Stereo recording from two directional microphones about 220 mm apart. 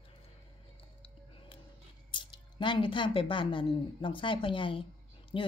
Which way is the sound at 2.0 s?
20° left (ahead or behind).